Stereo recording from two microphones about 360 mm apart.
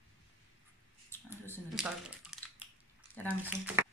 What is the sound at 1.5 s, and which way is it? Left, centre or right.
Squish, centre.